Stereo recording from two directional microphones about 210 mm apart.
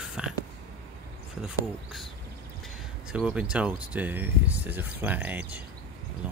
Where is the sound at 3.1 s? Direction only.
5° right (ahead or behind).